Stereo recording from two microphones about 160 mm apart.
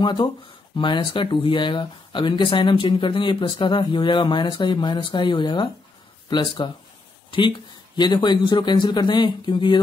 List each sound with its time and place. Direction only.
0.0 s speech: 30° left (ahead or behind)